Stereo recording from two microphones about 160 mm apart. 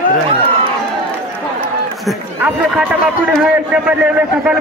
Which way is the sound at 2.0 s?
5° right (ahead or behind).